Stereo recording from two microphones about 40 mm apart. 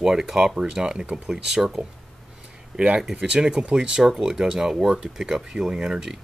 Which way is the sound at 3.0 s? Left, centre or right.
Centre.